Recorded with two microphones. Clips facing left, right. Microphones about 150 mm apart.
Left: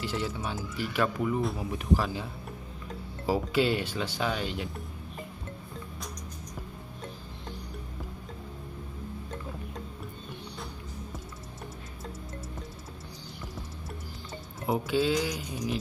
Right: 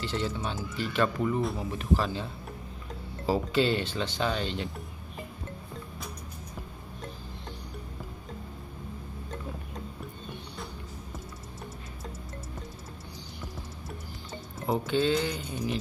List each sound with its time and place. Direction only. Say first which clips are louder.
0.0 s speech: right 1 dB; 10° left (ahead or behind)
3.3 s speech: even; 10° left (ahead or behind)
14.7 s speech: even; 5° left (ahead or behind)